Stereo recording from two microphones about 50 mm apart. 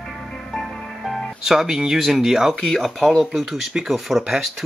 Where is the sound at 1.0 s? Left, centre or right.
Centre.